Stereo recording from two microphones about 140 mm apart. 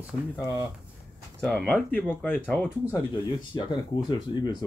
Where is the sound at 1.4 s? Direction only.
5° left (ahead or behind).